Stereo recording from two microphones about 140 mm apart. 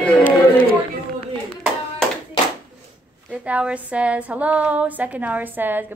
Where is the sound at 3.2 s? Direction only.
10° right (ahead or behind).